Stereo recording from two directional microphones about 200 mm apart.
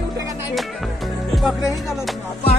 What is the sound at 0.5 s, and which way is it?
Music, centre (ahead or behind).